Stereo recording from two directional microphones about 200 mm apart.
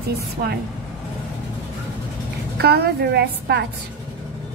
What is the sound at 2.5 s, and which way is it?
A woman's voice, 55° right (ahead or behind).